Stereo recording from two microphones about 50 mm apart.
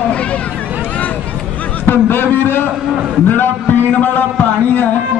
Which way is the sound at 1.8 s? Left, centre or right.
Left.